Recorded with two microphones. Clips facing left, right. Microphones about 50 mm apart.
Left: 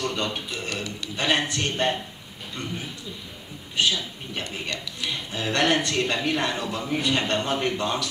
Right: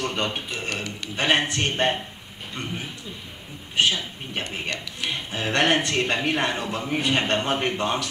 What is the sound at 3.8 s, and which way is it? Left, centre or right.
Speech, right.